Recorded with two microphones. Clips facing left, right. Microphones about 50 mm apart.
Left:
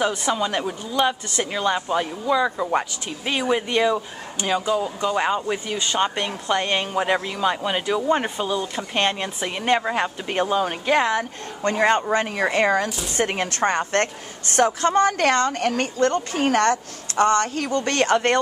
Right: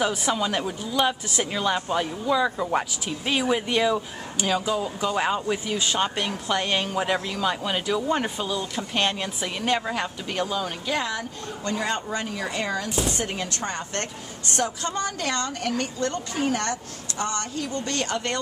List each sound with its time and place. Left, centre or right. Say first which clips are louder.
0.0 s a woman's voice: left 2 dB; centre; by 18.4 s left